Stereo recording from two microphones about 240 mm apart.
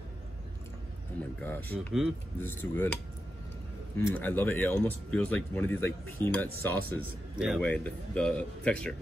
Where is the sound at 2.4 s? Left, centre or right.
Centre.